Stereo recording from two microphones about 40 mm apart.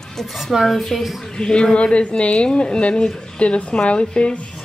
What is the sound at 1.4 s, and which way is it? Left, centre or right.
A woman's voice, left.